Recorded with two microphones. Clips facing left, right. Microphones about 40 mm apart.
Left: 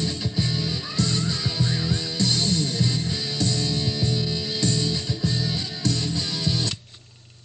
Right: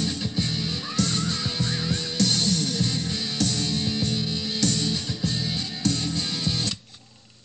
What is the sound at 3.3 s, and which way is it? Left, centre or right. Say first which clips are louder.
Music: even; right.